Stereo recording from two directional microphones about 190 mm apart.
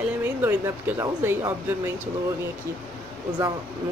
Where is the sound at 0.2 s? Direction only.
10° right (ahead or behind).